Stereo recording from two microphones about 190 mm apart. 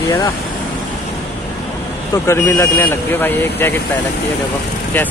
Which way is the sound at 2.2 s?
15° left (ahead or behind).